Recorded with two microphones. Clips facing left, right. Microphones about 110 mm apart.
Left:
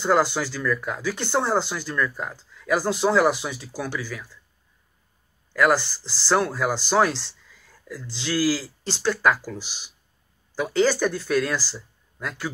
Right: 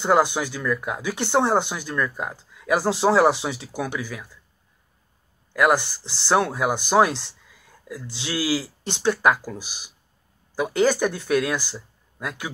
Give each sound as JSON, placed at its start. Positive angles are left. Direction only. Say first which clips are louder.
{"t": 0.0, "sound": "speech", "louder": "right 1 dB", "side_deg": -15}
{"t": 5.5, "sound": "speech", "louder": "right 1 dB", "side_deg": -15}